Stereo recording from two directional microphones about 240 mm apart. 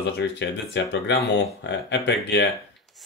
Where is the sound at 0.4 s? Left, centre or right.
Left.